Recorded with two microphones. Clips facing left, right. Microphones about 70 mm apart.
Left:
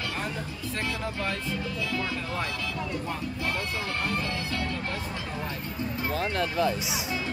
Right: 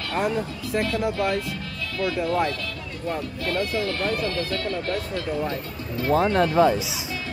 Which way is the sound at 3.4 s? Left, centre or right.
Centre.